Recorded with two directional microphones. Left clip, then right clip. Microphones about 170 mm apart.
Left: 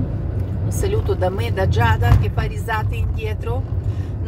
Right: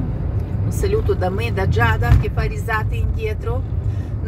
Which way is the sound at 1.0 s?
25° left (ahead or behind).